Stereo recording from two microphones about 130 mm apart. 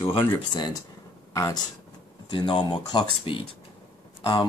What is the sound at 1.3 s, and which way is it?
Speech, 25° left (ahead or behind).